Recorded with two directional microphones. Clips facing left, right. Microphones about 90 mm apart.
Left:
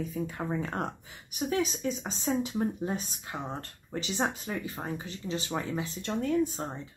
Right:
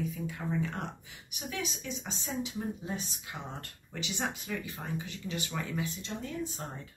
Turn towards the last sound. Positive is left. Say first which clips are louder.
# left 9 dB
turn(degrees=60)  # may be behind; listen again after turning